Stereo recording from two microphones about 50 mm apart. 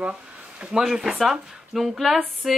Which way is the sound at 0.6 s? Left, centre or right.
Right.